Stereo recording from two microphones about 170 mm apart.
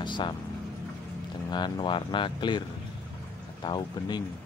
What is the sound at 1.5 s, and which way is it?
Speech, 25° left (ahead or behind).